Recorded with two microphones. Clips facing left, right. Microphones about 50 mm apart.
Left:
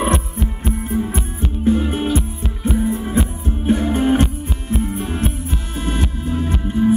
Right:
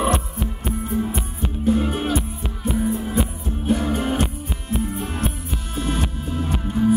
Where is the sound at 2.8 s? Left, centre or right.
Left.